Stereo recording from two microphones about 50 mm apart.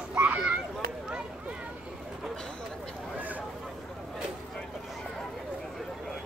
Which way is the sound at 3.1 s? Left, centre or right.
Right.